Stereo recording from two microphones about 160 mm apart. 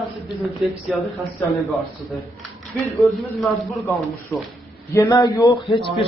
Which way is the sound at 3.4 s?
Centre (ahead or behind).